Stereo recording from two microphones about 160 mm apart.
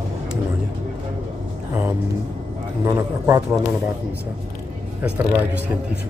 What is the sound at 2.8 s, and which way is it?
Speech, 20° right (ahead or behind).